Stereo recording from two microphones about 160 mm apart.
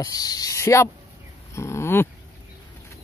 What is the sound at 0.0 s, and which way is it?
Speech, 25° left (ahead or behind).